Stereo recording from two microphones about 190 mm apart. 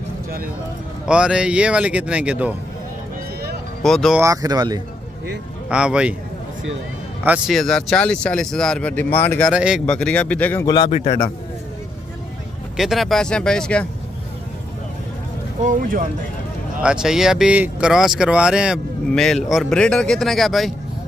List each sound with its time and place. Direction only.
1.0 s speech: 5° right (ahead or behind)
3.8 s speech: centre (ahead or behind)
4.2 s speech: 20° right (ahead or behind)
5.7 s speech: 5° right (ahead or behind)
7.2 s speech: 5° right (ahead or behind)
9.5 s speech: 5° right (ahead or behind)
10.7 s a man's voice: 30° left (ahead or behind)
12.7 s speech: centre (ahead or behind)
15.6 s speech: 45° right (ahead or behind)
16.8 s speech: 5° right (ahead or behind)